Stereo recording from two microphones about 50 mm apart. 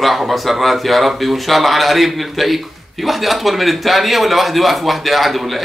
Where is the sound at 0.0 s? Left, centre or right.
Centre.